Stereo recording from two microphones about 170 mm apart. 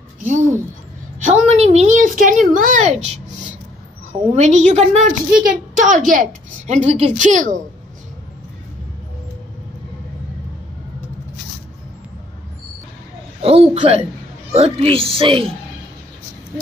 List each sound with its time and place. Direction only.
1.2 s a woman's voice: 40° right (ahead or behind)
4.4 s a woman's voice: 45° right (ahead or behind)
13.4 s speech: 35° right (ahead or behind)